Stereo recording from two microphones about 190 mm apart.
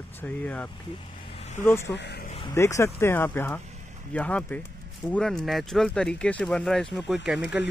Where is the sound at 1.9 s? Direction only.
60° left (ahead or behind).